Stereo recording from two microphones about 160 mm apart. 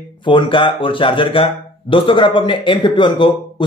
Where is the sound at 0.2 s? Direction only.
30° left (ahead or behind).